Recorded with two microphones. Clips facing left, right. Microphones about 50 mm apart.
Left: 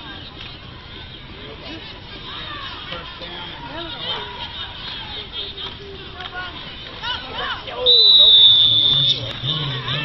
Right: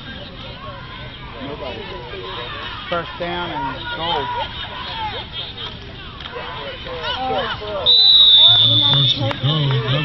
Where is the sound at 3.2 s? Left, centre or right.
Right.